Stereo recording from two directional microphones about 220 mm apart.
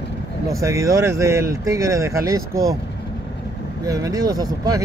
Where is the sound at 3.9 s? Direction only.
15° right (ahead or behind).